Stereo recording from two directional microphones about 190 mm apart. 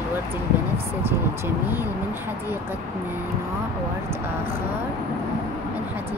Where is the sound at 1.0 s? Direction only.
10° right (ahead or behind).